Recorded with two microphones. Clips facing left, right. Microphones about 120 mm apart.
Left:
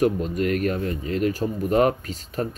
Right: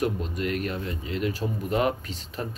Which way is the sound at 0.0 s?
45° left (ahead or behind).